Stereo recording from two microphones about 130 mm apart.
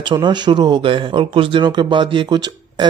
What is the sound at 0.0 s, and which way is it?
Speech, 35° right (ahead or behind).